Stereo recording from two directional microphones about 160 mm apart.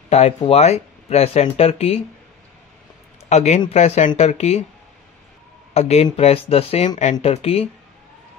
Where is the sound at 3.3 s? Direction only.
45° left (ahead or behind).